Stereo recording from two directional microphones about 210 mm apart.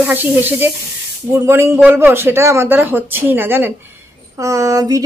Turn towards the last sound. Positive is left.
turn(degrees=-15)  # may be behind; listen again after turning